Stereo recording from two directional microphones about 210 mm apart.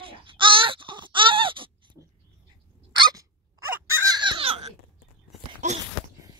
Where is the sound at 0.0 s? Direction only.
25° right (ahead or behind).